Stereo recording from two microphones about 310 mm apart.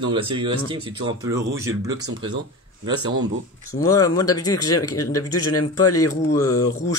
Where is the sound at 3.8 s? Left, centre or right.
Centre.